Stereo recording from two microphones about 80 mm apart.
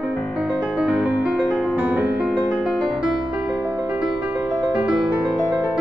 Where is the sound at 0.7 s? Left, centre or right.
Centre.